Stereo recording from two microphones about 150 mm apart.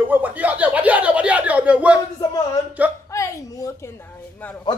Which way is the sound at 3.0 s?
20° left (ahead or behind).